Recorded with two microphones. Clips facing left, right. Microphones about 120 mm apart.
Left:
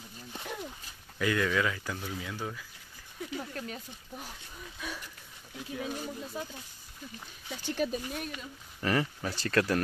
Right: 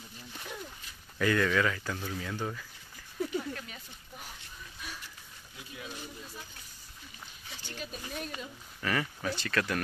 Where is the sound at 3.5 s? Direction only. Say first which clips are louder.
Left 5 dB; 40° left (ahead or behind).